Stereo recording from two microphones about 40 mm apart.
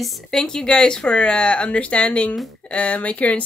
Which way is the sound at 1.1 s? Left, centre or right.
Left.